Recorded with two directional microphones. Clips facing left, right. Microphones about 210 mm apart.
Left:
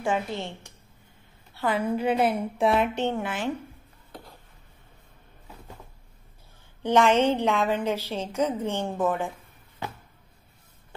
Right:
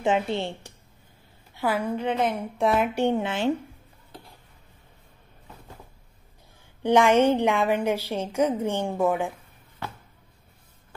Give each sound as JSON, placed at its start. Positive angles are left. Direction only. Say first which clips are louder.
{"t": 0.0, "sound": "a woman's voice", "louder": "right 4 dB", "side_deg": -25}
{"t": 1.5, "sound": "a sound", "louder": "right 1 dB", "side_deg": -10}
{"t": 1.8, "sound": "a woman's voice", "louder": "left 4 dB", "side_deg": 10}
{"t": 3.3, "sound": "a woman's voice", "louder": "right 5 dB", "side_deg": -30}
{"t": 6.8, "sound": "a woman's voice", "louder": "right 2 dB", "side_deg": -10}